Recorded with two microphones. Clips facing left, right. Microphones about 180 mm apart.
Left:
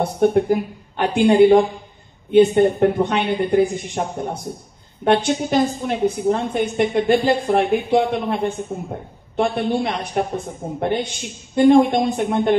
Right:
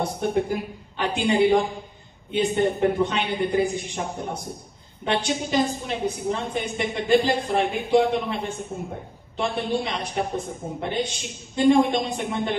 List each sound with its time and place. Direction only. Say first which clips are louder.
0.0 s a woman's voice: left 7 dB; 60° left (ahead or behind)